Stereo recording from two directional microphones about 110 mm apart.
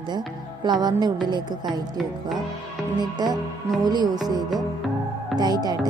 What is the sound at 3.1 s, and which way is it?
Speech, 40° right (ahead or behind).